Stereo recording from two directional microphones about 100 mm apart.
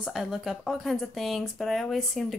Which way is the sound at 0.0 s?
5° right (ahead or behind).